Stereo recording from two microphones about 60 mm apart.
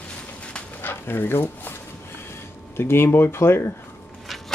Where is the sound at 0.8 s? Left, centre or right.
Left.